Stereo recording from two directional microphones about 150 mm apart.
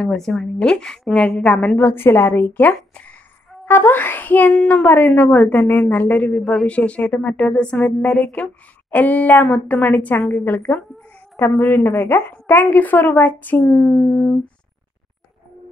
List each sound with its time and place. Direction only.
0.0 s a woman's voice: 5° left (ahead or behind)